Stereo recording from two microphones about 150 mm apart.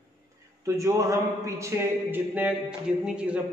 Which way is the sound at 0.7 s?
20° right (ahead or behind).